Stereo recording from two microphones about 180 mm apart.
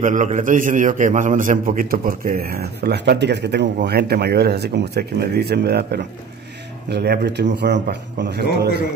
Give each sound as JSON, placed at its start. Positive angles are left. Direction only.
{"t": 0.0, "sound": "a man's voice", "side_deg": -45}